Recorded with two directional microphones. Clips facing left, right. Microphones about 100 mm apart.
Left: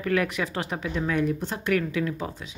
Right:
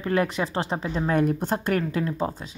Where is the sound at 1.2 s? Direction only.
50° right (ahead or behind).